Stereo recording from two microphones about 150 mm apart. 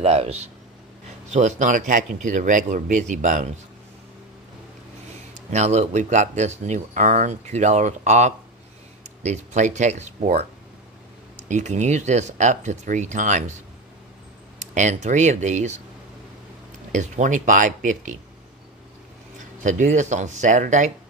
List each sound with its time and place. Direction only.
0.0 s speech: 40° right (ahead or behind)
1.3 s speech: 55° right (ahead or behind)
5.5 s speech: 50° right (ahead or behind)
11.4 s speech: 50° right (ahead or behind)
14.6 s speech: 50° right (ahead or behind)
16.9 s speech: 55° right (ahead or behind)
19.6 s speech: 55° right (ahead or behind)